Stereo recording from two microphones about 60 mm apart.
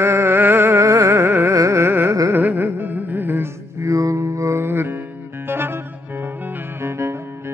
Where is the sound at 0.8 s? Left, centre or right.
Right.